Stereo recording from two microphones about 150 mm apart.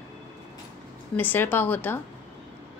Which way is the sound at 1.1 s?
10° left (ahead or behind).